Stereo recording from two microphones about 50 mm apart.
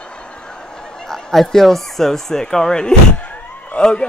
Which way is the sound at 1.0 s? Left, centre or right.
Centre.